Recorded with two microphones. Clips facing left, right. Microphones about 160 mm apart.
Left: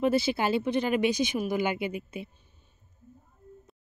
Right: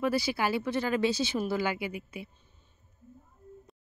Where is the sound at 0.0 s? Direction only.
25° left (ahead or behind).